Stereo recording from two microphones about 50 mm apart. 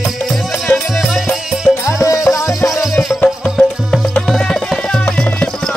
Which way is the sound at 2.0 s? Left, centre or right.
Left.